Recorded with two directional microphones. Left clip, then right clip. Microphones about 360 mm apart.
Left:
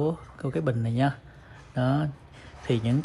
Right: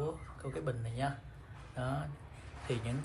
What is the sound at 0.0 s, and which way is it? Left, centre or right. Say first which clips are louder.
Speech: left 11 dB; centre.